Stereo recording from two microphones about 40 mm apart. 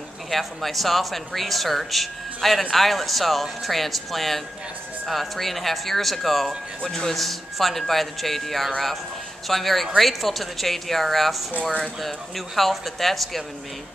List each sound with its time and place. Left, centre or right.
0.3 s speech: centre
6.8 s a man's voice: centre
7.1 s speech: centre